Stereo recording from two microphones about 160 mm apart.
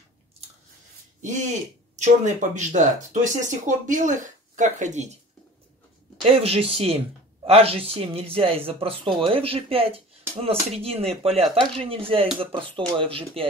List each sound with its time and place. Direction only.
2.0 s speech: 50° right (ahead or behind)
6.2 s speech: 35° right (ahead or behind)